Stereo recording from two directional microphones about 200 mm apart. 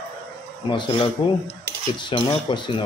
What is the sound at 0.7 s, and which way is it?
Speech, 25° left (ahead or behind).